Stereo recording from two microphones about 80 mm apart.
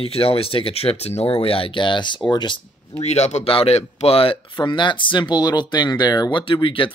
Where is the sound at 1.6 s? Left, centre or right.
Left.